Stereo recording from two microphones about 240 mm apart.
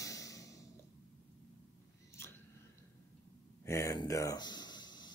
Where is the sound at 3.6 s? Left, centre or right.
Centre.